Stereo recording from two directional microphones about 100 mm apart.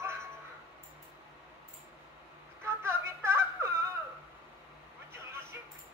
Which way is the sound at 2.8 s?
25° right (ahead or behind).